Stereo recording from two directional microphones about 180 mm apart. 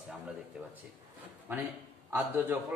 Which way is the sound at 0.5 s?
5° right (ahead or behind).